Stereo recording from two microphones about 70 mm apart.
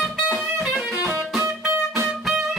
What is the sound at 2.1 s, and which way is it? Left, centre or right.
Music, centre.